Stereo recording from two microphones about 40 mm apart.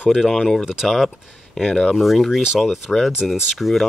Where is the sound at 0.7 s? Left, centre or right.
Centre.